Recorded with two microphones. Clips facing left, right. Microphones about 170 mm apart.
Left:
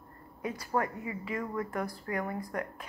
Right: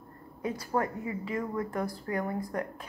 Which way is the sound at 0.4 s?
30° right (ahead or behind).